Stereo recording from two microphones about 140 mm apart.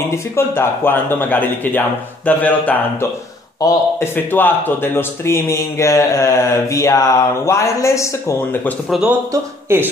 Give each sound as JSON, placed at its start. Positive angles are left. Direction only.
{"t": 0.1, "sound": "speech", "side_deg": 15}
{"t": 9.3, "sound": "a man's voice", "side_deg": -15}